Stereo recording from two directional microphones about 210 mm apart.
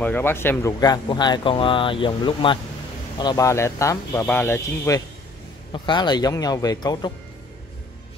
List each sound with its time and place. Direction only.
0.0 s speech: 10° left (ahead or behind)